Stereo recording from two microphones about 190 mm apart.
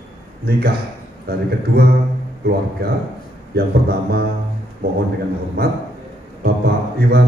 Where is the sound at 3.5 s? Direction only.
55° right (ahead or behind).